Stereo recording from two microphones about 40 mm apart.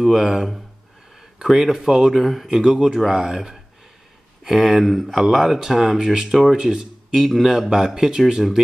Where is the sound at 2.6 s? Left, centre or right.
Centre.